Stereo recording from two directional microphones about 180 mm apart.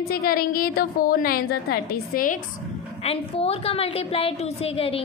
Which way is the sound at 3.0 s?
35° left (ahead or behind).